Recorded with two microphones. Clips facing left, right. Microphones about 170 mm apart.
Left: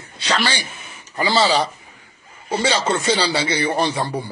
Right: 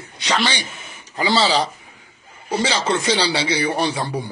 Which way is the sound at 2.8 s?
5° left (ahead or behind).